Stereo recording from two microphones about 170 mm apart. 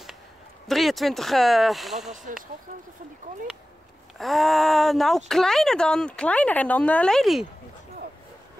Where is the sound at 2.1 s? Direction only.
50° right (ahead or behind).